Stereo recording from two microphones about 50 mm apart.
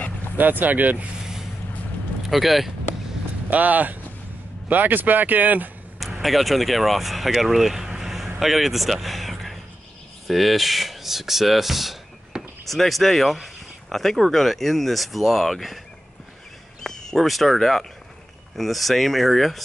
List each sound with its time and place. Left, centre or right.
0.4 s speech: right
2.2 s speech: centre
3.4 s speech: right
6.2 s speech: centre
8.0 s vehicle: centre
8.4 s speech: centre
16.8 s speech: centre